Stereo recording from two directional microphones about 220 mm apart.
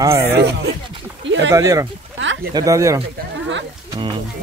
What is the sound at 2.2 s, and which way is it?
Speech, 60° right (ahead or behind).